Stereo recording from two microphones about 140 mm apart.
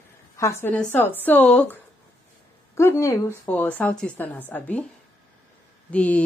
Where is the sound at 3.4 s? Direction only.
10° left (ahead or behind).